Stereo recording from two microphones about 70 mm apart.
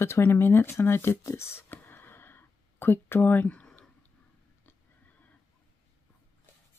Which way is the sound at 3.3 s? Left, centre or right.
Left.